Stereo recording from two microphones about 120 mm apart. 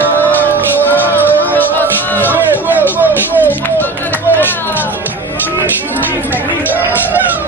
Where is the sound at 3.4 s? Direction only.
15° left (ahead or behind).